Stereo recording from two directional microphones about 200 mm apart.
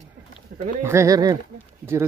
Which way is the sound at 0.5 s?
55° right (ahead or behind).